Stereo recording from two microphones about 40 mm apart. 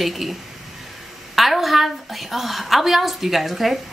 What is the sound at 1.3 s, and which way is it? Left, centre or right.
A woman's voice, centre.